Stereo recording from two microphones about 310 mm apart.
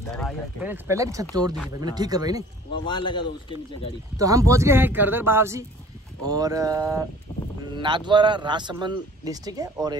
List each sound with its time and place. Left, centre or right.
0.0 s a man's voice: centre
2.7 s speech: centre
4.2 s a man's voice: centre